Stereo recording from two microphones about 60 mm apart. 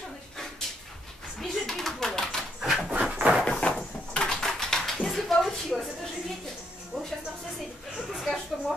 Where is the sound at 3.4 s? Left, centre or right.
Centre.